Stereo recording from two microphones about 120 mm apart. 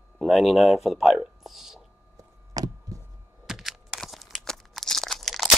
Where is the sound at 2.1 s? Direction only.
30° right (ahead or behind).